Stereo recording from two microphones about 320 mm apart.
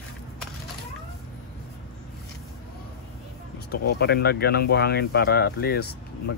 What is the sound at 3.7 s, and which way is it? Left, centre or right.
Speech, left.